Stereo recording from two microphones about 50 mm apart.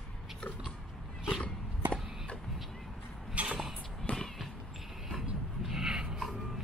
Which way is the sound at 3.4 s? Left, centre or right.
Right.